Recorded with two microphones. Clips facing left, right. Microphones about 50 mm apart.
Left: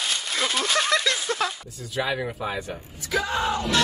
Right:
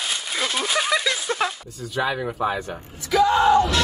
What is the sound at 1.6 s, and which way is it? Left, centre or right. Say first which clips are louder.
Speech: right 3 dB; centre.